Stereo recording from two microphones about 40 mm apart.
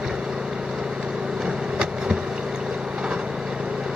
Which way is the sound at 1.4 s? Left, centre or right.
Centre.